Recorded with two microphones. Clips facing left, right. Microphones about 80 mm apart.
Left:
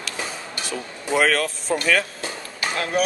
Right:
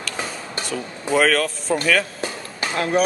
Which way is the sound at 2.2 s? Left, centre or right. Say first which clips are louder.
Right 2 dB; right.